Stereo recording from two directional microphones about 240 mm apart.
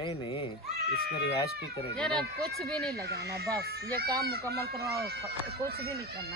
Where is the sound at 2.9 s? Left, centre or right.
Right.